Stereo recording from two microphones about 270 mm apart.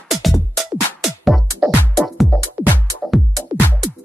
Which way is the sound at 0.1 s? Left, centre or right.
Centre.